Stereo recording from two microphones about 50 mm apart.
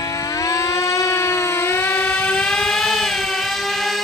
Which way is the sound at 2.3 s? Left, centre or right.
Centre.